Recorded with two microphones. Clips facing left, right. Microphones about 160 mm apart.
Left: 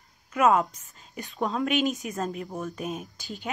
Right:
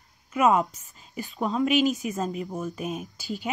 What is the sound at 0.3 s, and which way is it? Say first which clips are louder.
A woman's voice: even; 5° right (ahead or behind).